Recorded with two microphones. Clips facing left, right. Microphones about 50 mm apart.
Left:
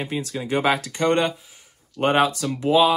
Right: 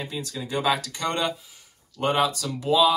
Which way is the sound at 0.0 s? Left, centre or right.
Left.